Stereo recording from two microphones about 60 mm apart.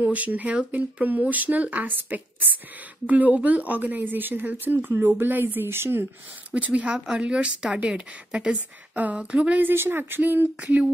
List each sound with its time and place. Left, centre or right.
0.0 s a woman's voice: right
6.5 s speech: right
8.9 s speech: right
9.6 s a woman's voice: right